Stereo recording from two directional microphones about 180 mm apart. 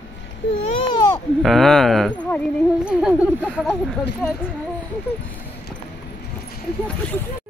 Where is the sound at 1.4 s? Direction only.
Centre (ahead or behind).